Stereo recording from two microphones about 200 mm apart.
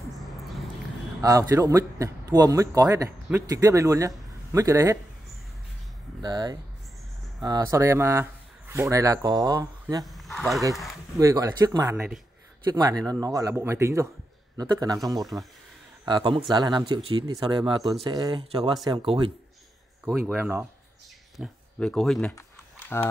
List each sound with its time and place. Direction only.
0.2 s a sound: centre (ahead or behind)
1.2 s a man's voice: 20° right (ahead or behind)
6.2 s speech: 20° right (ahead or behind)
10.0 s speech: centre (ahead or behind)
11.1 s a man's voice: 15° right (ahead or behind)
20.3 s a man's voice: 10° right (ahead or behind)
21.4 s speech: 5° left (ahead or behind)